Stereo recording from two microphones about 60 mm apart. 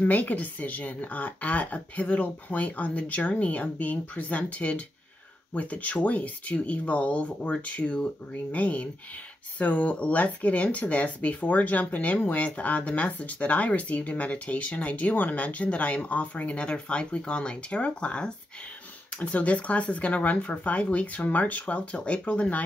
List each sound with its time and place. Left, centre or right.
0.0 s speech: left